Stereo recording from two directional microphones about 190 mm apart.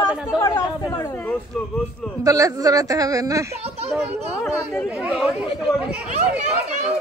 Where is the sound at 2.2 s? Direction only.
20° right (ahead or behind).